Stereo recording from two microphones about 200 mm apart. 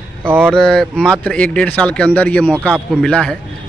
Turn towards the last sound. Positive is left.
turn(degrees=5)  # may be behind; listen again after turning